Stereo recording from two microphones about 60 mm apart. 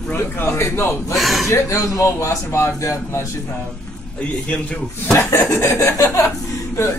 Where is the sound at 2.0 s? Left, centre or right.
Left.